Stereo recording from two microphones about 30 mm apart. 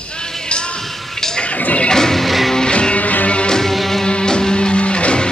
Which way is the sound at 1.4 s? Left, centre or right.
Left.